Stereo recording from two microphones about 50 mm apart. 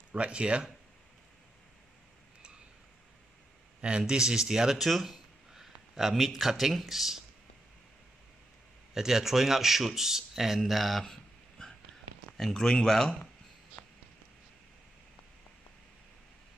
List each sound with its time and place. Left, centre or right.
0.1 s speech: right
4.1 s speech: centre
8.9 s speech: centre
11.1 s a sound: centre
12.4 s speech: centre